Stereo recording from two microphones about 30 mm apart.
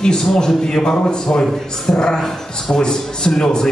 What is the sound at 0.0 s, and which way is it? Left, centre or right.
A man's voice, left.